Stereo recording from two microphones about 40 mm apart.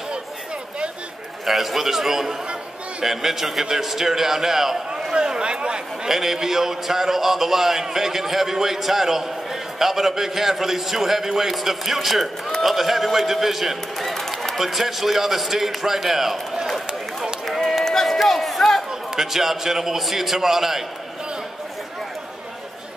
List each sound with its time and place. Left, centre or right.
1.4 s a man's voice: centre
5.1 s speech: right
6.0 s a man's voice: centre
13.9 s a man's voice: centre
17.5 s run: centre
17.8 s a sound: centre
18.9 s a man's voice: centre